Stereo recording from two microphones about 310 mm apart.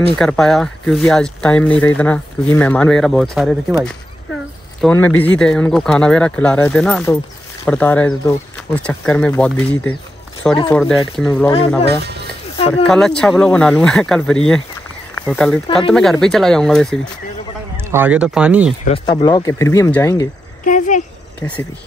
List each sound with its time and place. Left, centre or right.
0.2 s speech: centre
4.8 s speech: centre
12.5 s a sound: centre
12.8 s speech: centre
18.9 s speech: centre
20.6 s speech: left
21.4 s speech: centre